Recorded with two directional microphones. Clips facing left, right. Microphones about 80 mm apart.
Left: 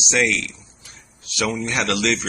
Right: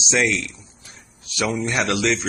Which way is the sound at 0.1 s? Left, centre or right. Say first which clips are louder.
Even; right.